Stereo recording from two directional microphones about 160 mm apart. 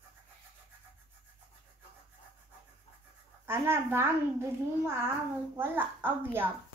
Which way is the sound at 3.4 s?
15° right (ahead or behind).